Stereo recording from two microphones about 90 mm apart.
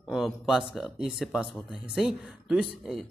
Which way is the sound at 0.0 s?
Centre (ahead or behind).